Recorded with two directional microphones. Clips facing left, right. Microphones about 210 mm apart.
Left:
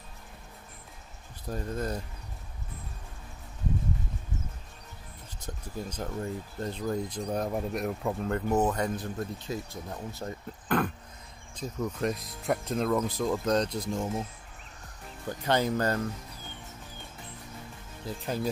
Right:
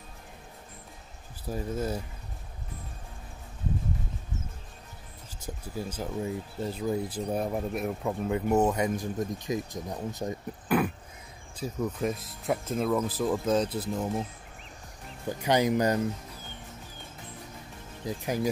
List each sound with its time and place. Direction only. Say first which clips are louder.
1.5 s speech: right 2 dB; 5° right (ahead or behind)
5.4 s speech: right 2 dB; 10° right (ahead or behind)
15.2 s speech: right 2 dB; 15° right (ahead or behind)
18.0 s speech: right 3 dB; 15° right (ahead or behind)